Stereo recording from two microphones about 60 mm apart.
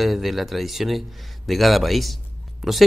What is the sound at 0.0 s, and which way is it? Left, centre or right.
Speech, centre.